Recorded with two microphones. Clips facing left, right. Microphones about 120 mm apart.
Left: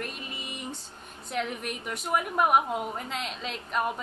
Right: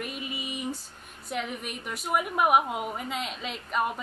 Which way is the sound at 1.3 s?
Centre (ahead or behind).